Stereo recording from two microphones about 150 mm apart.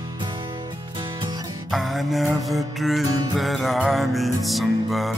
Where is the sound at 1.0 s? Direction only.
30° right (ahead or behind).